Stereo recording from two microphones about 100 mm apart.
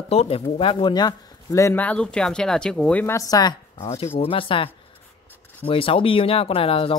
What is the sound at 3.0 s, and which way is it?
Speech, 35° left (ahead or behind).